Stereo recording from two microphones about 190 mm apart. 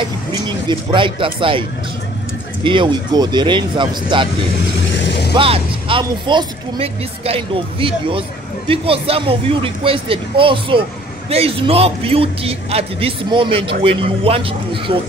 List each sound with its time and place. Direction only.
0.0 s speech: 25° right (ahead or behind)
2.6 s speech: 25° right (ahead or behind)
4.7 s vehicle: 70° left (ahead or behind)
5.3 s speech: 30° right (ahead or behind)